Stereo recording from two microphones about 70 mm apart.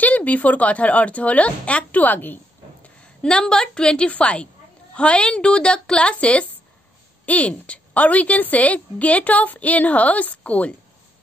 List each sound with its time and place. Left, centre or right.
0.0 s speech: left
3.2 s a woman's voice: centre